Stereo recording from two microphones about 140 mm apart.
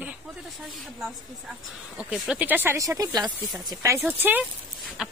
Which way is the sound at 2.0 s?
5° right (ahead or behind).